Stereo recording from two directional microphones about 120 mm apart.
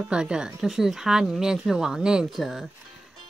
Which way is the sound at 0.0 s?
5° right (ahead or behind).